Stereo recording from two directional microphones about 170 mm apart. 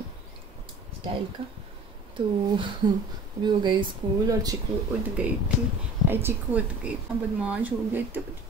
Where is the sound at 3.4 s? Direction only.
25° right (ahead or behind).